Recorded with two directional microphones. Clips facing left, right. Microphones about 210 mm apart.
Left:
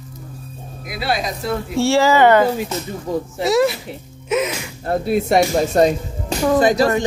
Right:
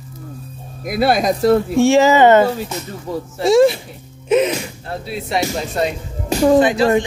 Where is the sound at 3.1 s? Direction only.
15° left (ahead or behind).